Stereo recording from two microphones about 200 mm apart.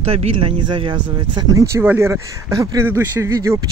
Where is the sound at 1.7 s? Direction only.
10° right (ahead or behind).